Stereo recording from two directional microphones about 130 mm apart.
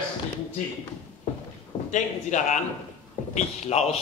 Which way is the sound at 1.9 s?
70° left (ahead or behind).